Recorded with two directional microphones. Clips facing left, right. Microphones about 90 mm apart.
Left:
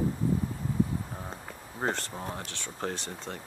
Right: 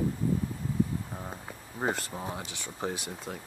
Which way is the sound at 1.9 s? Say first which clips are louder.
Even; 5° right (ahead or behind).